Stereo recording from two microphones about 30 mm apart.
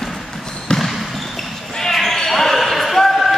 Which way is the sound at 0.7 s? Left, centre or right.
Left.